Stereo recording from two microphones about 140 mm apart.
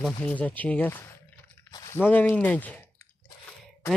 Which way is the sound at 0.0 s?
10° left (ahead or behind).